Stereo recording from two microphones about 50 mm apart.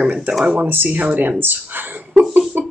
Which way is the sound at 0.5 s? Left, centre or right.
Right.